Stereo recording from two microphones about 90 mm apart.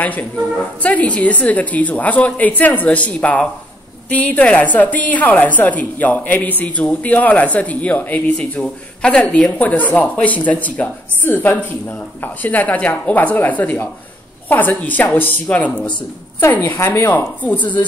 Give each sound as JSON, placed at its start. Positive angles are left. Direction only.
{"t": 0.0, "sound": "speech", "side_deg": 15}
{"t": 16.7, "sound": "speech", "side_deg": 35}
{"t": 17.0, "sound": "speech", "side_deg": 20}